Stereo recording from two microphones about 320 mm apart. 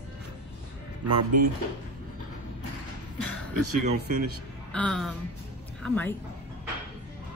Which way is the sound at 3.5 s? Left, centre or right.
Right.